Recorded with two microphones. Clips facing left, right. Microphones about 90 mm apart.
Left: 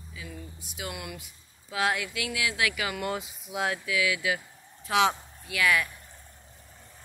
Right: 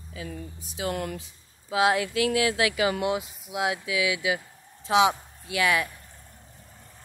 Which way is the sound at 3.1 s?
5° right (ahead or behind).